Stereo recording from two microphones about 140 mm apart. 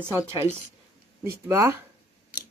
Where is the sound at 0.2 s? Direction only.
15° right (ahead or behind).